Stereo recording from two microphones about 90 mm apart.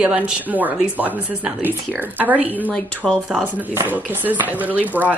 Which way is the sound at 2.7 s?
10° left (ahead or behind).